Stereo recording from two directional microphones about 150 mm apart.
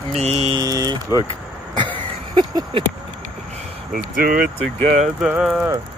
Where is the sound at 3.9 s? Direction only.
75° right (ahead or behind).